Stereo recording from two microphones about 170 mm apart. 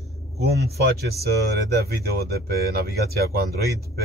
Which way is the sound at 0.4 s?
70° right (ahead or behind).